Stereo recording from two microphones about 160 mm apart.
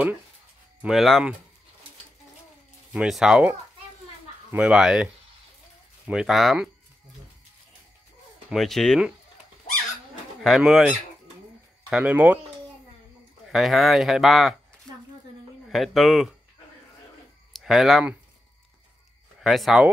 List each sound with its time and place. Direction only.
0.8 s speech: centre (ahead or behind)
2.9 s speech: 5° right (ahead or behind)
8.5 s speech: centre (ahead or behind)
10.4 s speech: centre (ahead or behind)
13.5 s speech: centre (ahead or behind)
15.7 s speech: centre (ahead or behind)
17.5 s speech: centre (ahead or behind)
19.4 s speech: centre (ahead or behind)